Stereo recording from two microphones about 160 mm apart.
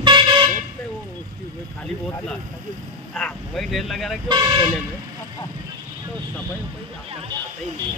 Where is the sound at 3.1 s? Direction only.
5° left (ahead or behind).